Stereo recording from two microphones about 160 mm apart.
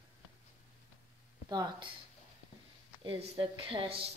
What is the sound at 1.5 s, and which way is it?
Speech, 25° right (ahead or behind).